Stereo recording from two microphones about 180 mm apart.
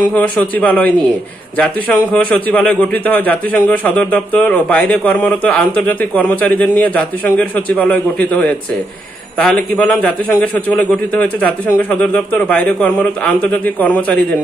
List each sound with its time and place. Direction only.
0.0 s a man's voice: 10° left (ahead or behind)
2.1 s a man's voice: 10° left (ahead or behind)